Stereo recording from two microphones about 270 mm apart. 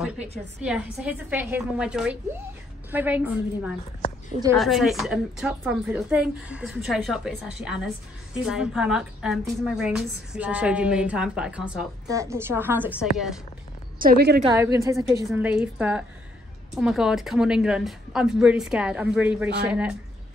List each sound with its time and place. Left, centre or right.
0.2 s a woman's voice: right
0.7 s a woman's voice: centre
13.9 s a woman's voice: right
14.5 s a woman's voice: centre